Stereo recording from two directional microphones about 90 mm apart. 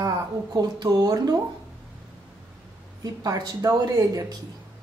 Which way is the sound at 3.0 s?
45° right (ahead or behind).